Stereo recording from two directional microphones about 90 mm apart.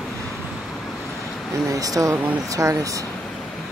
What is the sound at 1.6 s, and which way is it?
Speech, 40° right (ahead or behind).